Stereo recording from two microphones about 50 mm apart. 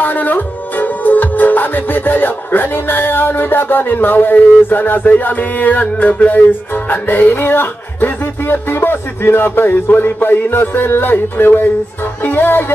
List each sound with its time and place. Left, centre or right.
0.0 s music: left